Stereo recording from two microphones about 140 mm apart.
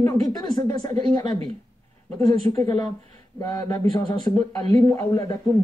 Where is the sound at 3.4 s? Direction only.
25° left (ahead or behind).